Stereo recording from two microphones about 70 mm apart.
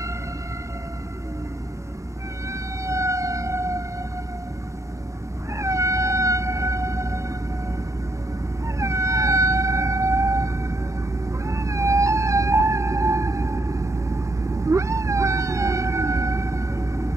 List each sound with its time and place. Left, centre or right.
2.5 s emergency vehicle: right
5.5 s cat: right
8.6 s howl: right
11.4 s a sound: right